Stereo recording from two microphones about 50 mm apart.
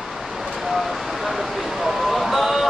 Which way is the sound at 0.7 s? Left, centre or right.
Centre.